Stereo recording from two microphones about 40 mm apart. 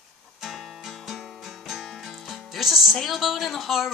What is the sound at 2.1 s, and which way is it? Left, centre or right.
Music, centre.